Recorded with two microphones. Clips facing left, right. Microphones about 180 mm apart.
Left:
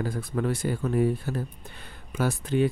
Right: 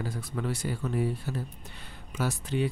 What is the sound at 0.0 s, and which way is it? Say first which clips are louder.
Speech: left 5 dB; 55° left (ahead or behind).